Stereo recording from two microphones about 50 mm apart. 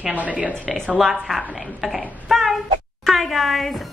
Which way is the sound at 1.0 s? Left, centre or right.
Centre.